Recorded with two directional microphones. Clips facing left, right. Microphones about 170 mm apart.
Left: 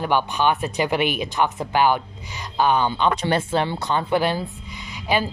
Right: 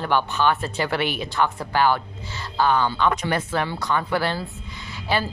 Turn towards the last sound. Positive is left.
turn(degrees=15)  # may be behind; listen again after turning